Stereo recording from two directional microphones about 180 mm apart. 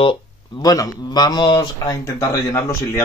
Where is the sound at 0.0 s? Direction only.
25° left (ahead or behind).